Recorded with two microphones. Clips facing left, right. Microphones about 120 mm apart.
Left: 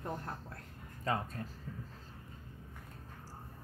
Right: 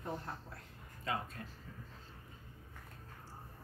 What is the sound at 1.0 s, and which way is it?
Speech, 40° left (ahead or behind).